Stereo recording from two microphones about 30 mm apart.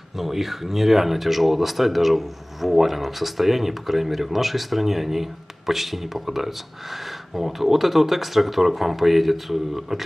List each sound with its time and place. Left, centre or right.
0.1 s speech: centre